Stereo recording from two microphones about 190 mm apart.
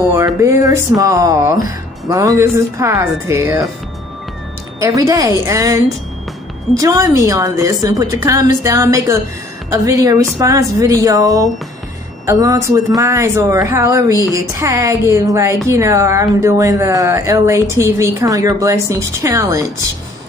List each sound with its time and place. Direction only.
0.1 s a woman's voice: 15° right (ahead or behind)
4.7 s a woman's voice: 15° right (ahead or behind)
6.8 s a woman's voice: 15° right (ahead or behind)